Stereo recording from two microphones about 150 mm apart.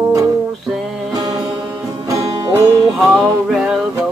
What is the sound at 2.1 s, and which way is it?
Music, 20° right (ahead or behind).